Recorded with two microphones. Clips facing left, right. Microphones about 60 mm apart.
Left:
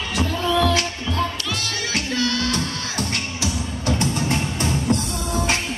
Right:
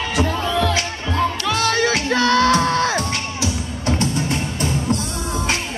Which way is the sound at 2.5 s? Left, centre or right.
Right.